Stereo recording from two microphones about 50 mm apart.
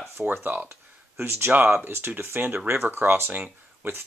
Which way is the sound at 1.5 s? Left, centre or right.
Right.